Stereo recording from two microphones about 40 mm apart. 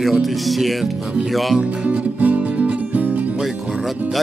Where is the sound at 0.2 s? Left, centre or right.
Centre.